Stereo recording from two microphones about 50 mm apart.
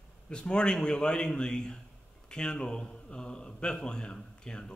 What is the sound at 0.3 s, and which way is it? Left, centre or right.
A man's voice, centre.